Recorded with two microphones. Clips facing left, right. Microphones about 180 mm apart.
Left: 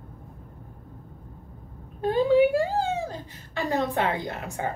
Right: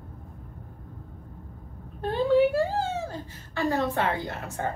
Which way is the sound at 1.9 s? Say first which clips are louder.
Left 2 dB; 15° left (ahead or behind).